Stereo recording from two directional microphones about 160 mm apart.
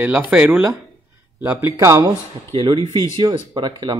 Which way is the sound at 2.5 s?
30° right (ahead or behind).